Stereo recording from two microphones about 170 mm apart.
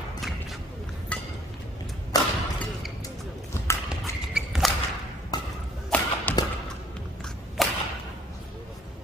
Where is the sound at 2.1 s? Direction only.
20° left (ahead or behind).